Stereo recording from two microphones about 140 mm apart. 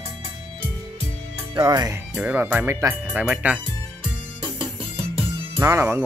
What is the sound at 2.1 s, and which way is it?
Speech, 15° right (ahead or behind).